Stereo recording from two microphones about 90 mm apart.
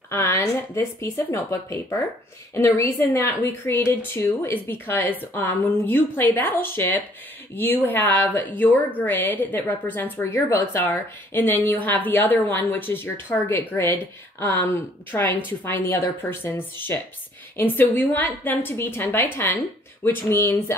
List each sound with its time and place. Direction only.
0.1 s a woman's voice: 35° left (ahead or behind)